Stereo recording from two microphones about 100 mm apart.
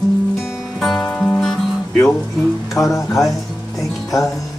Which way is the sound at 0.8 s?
5° left (ahead or behind).